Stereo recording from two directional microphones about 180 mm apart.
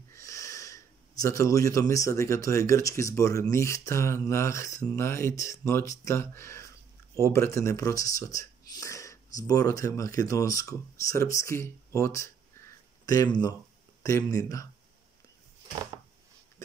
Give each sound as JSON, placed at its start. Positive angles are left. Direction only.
{"t": 0.1, "sound": "speech", "side_deg": 15}